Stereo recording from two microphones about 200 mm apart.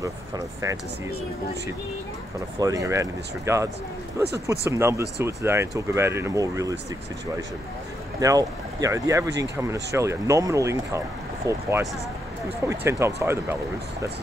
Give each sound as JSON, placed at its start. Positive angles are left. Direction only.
{"t": 2.6, "sound": "speech", "side_deg": -15}
{"t": 8.2, "sound": "speech", "side_deg": -15}